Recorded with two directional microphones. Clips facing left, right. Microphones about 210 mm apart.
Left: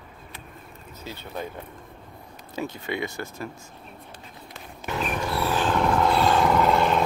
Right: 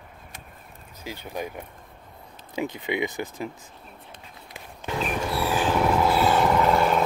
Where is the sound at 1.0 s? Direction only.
15° right (ahead or behind).